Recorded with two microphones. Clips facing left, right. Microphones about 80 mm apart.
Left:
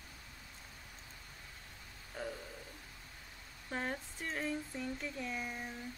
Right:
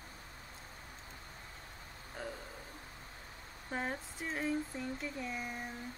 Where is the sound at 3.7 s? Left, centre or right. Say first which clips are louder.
Right 1 dB; centre.